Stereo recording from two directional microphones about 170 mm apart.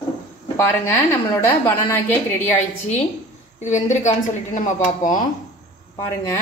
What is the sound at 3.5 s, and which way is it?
A woman's voice, 45° left (ahead or behind).